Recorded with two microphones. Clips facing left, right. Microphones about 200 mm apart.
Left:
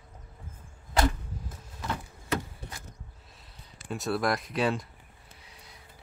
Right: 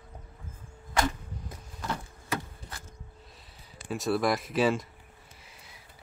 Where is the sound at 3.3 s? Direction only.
Centre (ahead or behind).